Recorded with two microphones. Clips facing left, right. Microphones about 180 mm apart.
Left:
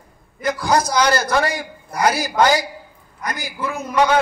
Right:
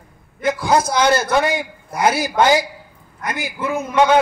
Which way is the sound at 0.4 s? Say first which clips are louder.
Right 2 dB; 25° right (ahead or behind).